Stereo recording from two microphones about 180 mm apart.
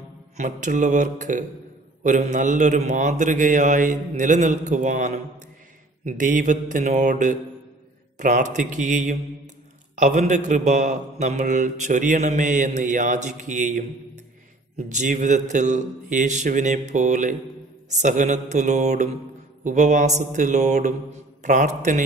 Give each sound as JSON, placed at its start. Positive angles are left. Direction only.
{"t": 0.4, "sound": "a man's voice", "side_deg": -45}